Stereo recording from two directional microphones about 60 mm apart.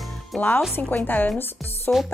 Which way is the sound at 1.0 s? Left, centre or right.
Left.